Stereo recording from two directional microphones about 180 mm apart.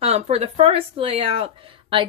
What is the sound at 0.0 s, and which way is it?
Speech, 35° right (ahead or behind).